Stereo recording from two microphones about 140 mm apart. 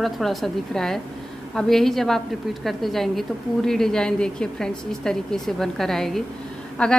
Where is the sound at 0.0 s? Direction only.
Centre (ahead or behind).